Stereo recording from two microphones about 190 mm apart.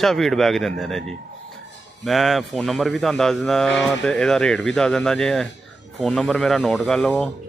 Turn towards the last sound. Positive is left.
turn(degrees=5)  # may be behind; listen again after turning